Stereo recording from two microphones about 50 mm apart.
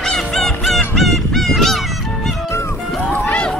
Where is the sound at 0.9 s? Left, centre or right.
Centre.